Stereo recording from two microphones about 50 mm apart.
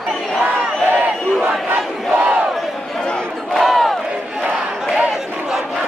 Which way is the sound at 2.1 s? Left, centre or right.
Centre.